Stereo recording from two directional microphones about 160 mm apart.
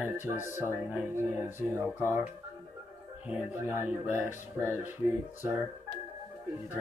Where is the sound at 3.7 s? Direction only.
10° right (ahead or behind).